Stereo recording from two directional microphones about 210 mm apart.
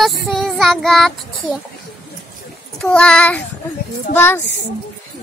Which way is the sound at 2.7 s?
5° left (ahead or behind).